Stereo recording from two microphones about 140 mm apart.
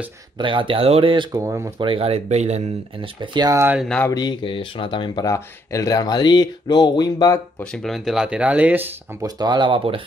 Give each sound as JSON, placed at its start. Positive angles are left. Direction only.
{"t": 0.4, "sound": "speech", "side_deg": -40}
{"t": 1.3, "sound": "speech", "side_deg": -20}
{"t": 1.8, "sound": "speech", "side_deg": -40}
{"t": 3.2, "sound": "speech", "side_deg": -30}
{"t": 3.8, "sound": "speech", "side_deg": 5}
{"t": 4.1, "sound": "speech", "side_deg": 30}
{"t": 5.2, "sound": "speech", "side_deg": 20}
{"t": 7.5, "sound": "speech", "side_deg": 5}
{"t": 9.2, "sound": "speech", "side_deg": -30}